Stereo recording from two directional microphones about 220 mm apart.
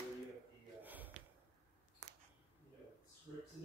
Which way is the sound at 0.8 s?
10° right (ahead or behind).